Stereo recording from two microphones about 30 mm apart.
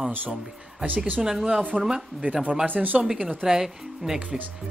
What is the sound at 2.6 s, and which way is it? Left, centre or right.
Speech, right.